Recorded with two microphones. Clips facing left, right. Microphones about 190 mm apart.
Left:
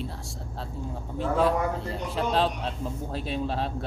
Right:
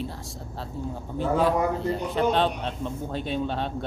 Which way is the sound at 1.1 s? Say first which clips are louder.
Right 1 dB; centre (ahead or behind).